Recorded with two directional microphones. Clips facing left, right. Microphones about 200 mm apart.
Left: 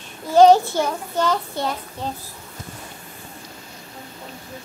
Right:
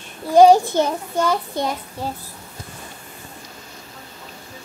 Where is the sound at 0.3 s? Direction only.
15° right (ahead or behind).